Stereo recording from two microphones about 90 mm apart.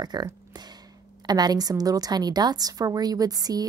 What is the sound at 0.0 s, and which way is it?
A woman's voice, 50° right (ahead or behind).